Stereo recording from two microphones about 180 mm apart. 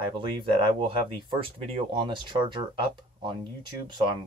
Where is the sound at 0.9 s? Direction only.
30° right (ahead or behind).